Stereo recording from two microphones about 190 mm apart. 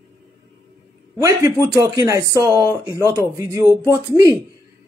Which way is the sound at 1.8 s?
15° right (ahead or behind).